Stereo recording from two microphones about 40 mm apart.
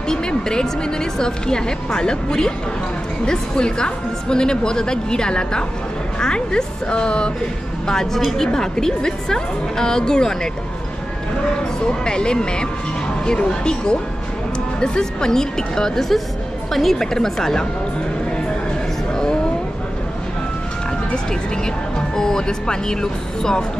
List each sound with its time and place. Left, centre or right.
0.1 s a woman's voice: left
7.8 s a woman's voice: centre
11.8 s a woman's voice: left
21.9 s speech: centre